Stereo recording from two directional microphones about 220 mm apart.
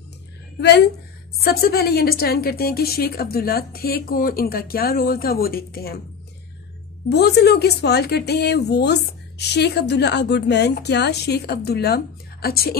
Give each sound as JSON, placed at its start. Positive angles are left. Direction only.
{"t": 0.6, "sound": "a woman's voice", "side_deg": 50}
{"t": 7.1, "sound": "a woman's voice", "side_deg": 50}